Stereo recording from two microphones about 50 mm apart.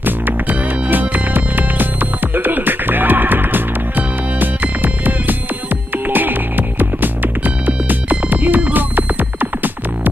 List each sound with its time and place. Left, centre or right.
0.0 s music: right